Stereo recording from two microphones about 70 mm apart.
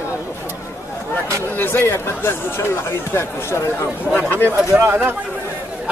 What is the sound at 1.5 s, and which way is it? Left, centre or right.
Speech, left.